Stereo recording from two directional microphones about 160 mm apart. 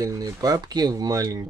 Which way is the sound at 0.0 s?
20° right (ahead or behind).